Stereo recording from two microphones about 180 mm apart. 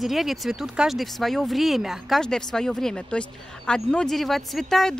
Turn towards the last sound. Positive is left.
turn(degrees=0)  # may be behind; listen again after turning